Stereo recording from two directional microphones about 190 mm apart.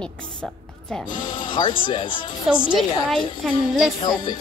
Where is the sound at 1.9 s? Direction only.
25° left (ahead or behind).